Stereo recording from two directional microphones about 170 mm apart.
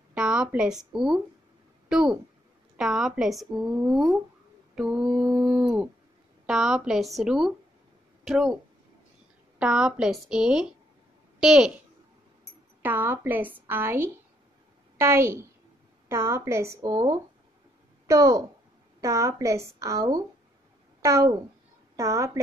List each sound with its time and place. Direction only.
0.1 s speech: 5° right (ahead or behind)
9.6 s a woman's voice: 5° right (ahead or behind)
12.8 s a woman's voice: 10° right (ahead or behind)